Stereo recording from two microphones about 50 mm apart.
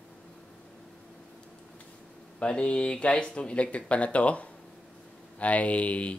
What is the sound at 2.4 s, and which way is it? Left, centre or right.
Speech, left.